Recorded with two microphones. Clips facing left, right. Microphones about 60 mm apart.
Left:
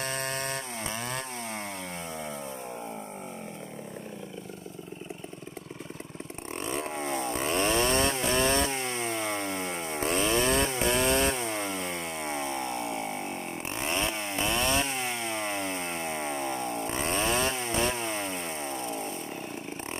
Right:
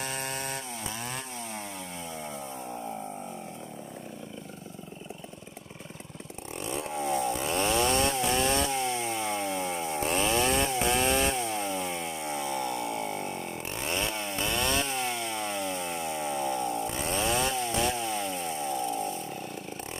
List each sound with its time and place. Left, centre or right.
0.0 s chainsaw: left
6.6 s chainsaw: left